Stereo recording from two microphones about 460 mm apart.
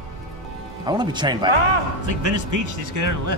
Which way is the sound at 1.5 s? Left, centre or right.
Right.